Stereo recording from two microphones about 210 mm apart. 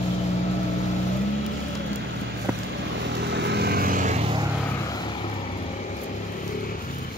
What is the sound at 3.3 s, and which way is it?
Vehicle, 50° right (ahead or behind).